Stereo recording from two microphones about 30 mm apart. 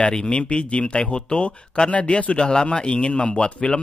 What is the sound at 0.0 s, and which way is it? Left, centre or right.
Speech, left.